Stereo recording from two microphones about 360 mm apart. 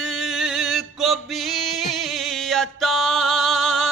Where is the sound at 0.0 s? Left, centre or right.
Centre.